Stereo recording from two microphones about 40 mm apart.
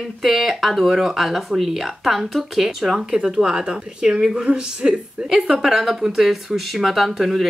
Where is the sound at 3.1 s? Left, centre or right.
Centre.